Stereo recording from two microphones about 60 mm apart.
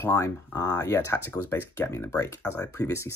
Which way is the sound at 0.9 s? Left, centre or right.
Left.